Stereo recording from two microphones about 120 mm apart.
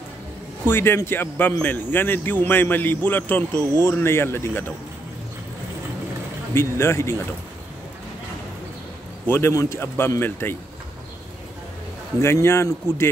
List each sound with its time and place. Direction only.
0.7 s a man's voice: 20° left (ahead or behind)
6.5 s speech: 20° left (ahead or behind)
9.3 s speech: 25° left (ahead or behind)
12.2 s speech: 20° left (ahead or behind)